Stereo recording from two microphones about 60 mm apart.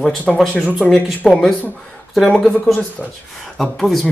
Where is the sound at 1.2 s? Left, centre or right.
Centre.